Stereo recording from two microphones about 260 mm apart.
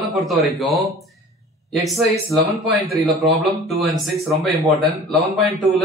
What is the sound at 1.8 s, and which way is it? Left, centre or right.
Speech, centre.